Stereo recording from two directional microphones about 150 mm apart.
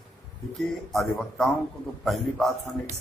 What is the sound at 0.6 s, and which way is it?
Speech, centre (ahead or behind).